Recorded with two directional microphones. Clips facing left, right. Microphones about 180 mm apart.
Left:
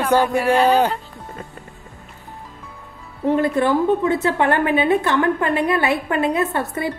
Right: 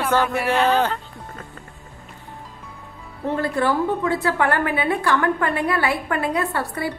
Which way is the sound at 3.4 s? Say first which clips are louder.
Left 2 dB; 20° left (ahead or behind).